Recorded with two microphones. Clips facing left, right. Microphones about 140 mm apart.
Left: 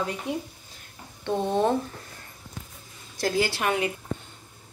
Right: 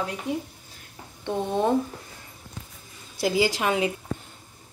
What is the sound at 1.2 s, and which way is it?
Speech, 10° right (ahead or behind).